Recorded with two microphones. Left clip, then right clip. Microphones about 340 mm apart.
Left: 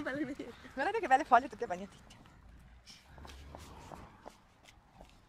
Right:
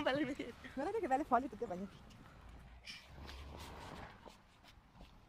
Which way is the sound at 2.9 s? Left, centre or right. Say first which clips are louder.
Right 5 dB; centre.